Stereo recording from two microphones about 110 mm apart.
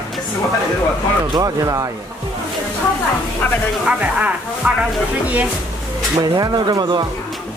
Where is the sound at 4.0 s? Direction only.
15° right (ahead or behind).